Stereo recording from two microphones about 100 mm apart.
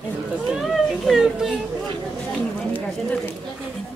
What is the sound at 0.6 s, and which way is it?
Children playing, 5° right (ahead or behind).